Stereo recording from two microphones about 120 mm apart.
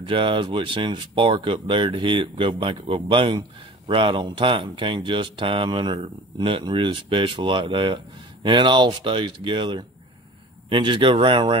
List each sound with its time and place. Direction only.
0.0 s speech: 45° right (ahead or behind)